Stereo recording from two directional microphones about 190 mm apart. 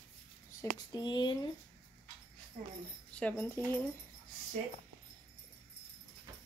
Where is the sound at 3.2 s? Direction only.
10° left (ahead or behind).